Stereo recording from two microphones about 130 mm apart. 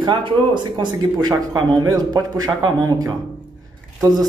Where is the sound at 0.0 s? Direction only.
35° right (ahead or behind).